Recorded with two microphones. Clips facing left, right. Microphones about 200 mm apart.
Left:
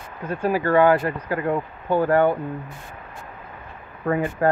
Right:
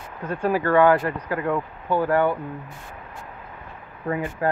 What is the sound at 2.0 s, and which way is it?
Speech, 45° left (ahead or behind).